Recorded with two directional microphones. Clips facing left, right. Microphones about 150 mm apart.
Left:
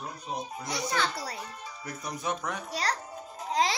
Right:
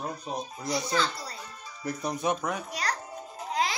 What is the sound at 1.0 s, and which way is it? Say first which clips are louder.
Speech: right 1 dB; 70° left (ahead or behind).